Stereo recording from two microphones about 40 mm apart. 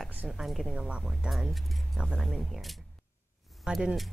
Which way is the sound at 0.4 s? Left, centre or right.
Centre.